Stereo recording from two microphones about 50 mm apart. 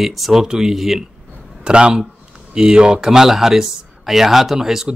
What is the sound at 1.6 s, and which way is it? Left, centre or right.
Speech, centre.